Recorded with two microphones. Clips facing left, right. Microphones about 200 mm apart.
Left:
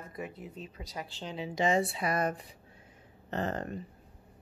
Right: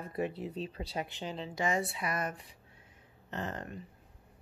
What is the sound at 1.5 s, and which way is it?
Speech, 25° left (ahead or behind).